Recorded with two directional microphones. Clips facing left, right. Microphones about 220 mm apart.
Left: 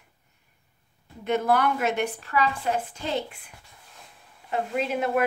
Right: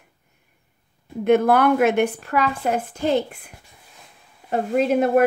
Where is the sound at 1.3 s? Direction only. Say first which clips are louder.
Right 7 dB; 55° right (ahead or behind).